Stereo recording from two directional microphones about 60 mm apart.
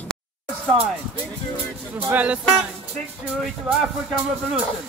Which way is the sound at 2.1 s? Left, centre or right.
Right.